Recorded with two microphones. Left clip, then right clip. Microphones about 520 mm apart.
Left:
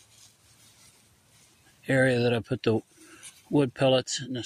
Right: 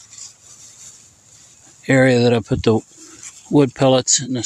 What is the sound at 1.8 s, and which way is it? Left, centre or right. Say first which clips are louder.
Speech: right 10 dB; left.